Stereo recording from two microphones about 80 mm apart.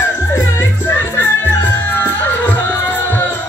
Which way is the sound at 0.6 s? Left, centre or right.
Left.